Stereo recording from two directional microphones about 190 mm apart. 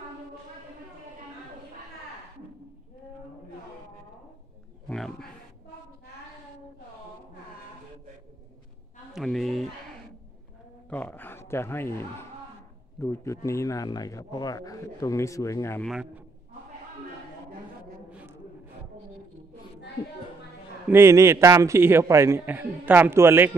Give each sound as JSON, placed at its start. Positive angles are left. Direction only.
{"t": 4.8, "sound": "a man's voice", "side_deg": 0}
{"t": 9.1, "sound": "speech", "side_deg": 0}
{"t": 10.9, "sound": "a man's voice", "side_deg": 10}
{"t": 15.8, "sound": "speech", "side_deg": 0}
{"t": 20.9, "sound": "a man's voice", "side_deg": -15}